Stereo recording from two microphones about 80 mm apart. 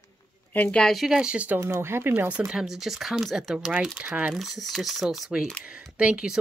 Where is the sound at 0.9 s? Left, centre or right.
Centre.